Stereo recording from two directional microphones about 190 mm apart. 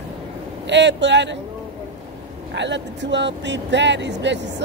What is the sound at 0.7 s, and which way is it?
Speech, 70° right (ahead or behind).